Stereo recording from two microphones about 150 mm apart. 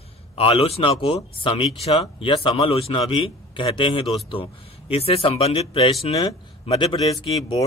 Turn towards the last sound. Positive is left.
turn(degrees=25)  # may be behind; listen again after turning